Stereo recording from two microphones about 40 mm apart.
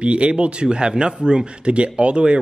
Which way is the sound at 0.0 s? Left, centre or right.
Right.